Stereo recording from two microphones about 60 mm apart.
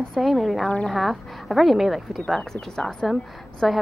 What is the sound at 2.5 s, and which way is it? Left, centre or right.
Speech, centre.